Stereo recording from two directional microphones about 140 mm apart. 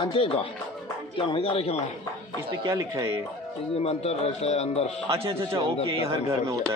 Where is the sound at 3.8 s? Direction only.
50° left (ahead or behind).